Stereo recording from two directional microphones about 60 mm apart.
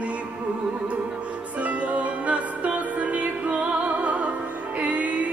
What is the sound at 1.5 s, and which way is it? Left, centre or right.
Music, right.